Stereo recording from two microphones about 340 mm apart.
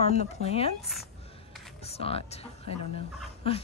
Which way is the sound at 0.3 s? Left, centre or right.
Centre.